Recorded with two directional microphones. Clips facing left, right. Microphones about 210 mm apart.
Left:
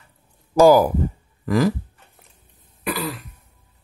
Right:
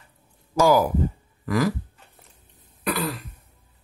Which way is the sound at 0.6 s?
35° left (ahead or behind).